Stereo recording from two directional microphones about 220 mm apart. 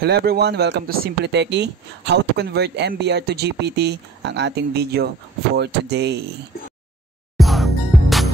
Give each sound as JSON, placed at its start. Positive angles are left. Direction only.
{"t": 0.0, "sound": "speech", "side_deg": -45}
{"t": 7.3, "sound": "music", "side_deg": 0}